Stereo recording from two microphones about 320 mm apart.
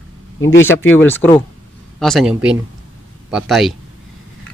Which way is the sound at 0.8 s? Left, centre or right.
Left.